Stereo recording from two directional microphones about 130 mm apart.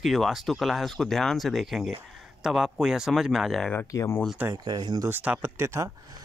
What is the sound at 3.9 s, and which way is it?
Speech, 25° left (ahead or behind).